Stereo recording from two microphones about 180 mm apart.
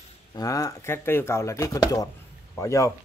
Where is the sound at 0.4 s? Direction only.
20° left (ahead or behind).